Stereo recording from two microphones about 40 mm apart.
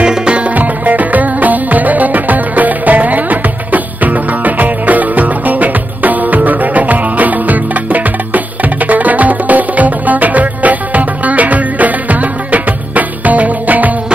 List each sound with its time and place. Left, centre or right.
0.0 s music: right
0.6 s music: right